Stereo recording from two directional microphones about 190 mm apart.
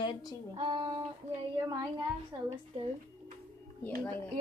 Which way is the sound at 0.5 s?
30° right (ahead or behind).